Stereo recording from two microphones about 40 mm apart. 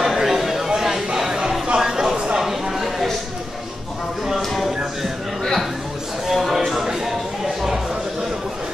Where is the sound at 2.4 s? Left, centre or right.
Centre.